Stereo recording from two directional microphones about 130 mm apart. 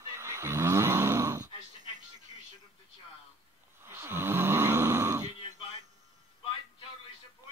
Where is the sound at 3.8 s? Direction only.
15° right (ahead or behind).